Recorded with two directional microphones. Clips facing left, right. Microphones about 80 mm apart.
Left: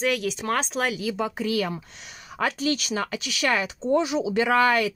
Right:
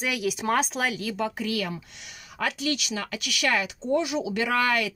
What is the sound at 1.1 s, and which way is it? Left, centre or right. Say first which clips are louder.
Speech: left 2 dB; left.